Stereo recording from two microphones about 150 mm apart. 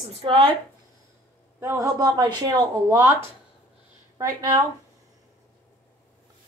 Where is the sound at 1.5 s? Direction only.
15° right (ahead or behind).